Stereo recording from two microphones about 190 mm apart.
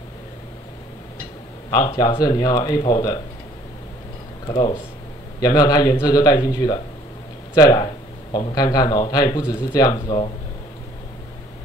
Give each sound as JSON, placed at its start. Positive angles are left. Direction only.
{"t": 1.7, "sound": "speech", "side_deg": 20}
{"t": 4.5, "sound": "speech", "side_deg": 25}